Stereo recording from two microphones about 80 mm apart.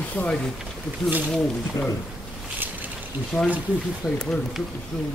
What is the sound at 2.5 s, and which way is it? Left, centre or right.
Boat, right.